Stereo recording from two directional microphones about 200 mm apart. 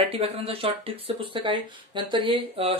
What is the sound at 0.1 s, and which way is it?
Speech, 30° right (ahead or behind).